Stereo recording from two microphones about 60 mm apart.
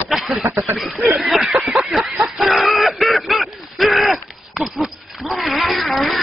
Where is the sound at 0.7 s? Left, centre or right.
Centre.